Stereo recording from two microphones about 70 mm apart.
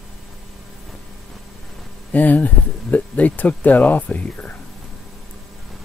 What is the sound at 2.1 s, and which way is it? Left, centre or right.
Speech, left.